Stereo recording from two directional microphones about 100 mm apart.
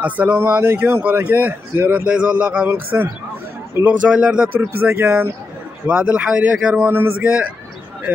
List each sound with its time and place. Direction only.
0.0 s speech: 15° right (ahead or behind)
5.9 s speech: 10° right (ahead or behind)